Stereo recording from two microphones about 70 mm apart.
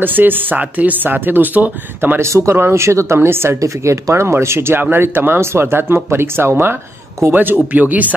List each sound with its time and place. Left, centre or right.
0.0 s speech: right
2.1 s speech: right